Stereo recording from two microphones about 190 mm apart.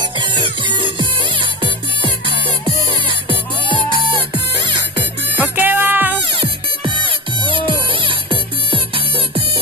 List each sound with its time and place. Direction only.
0.2 s music: 25° right (ahead or behind)
5.4 s music: 10° right (ahead or behind)
6.3 s music: 25° right (ahead or behind)